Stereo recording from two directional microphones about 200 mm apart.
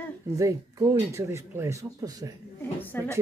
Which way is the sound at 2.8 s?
10° left (ahead or behind).